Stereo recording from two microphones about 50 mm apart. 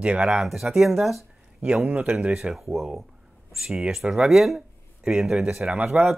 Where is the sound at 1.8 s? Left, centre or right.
Right.